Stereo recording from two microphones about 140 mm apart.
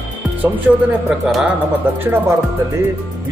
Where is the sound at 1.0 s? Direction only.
5° right (ahead or behind).